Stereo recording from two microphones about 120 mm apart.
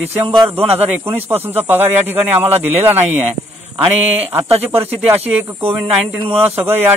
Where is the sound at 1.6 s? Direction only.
15° right (ahead or behind).